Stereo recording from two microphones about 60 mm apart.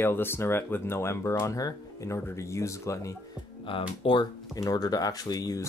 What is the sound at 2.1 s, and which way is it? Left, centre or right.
Speech, left.